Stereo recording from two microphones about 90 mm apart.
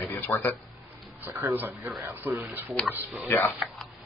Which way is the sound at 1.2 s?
20° right (ahead or behind).